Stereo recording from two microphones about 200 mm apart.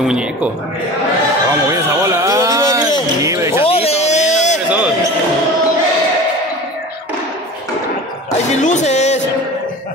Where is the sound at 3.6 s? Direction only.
30° left (ahead or behind).